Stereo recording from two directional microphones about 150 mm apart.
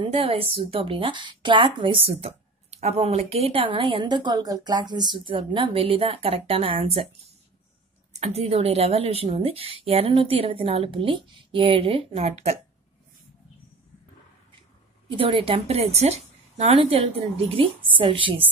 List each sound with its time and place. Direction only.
0.0 s speech: 35° right (ahead or behind)
8.1 s speech: 45° right (ahead or behind)
15.0 s speech: 35° right (ahead or behind)